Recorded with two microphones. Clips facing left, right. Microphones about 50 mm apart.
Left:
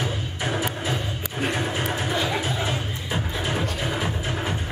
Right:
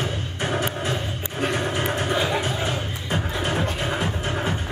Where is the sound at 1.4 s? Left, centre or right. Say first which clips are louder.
Right 2 dB; centre.